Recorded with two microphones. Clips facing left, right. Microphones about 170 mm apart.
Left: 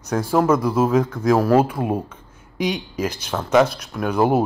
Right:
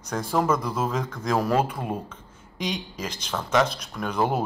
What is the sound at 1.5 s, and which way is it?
Speech, 55° left (ahead or behind).